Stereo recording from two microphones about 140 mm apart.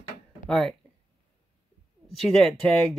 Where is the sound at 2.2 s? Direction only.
Centre (ahead or behind).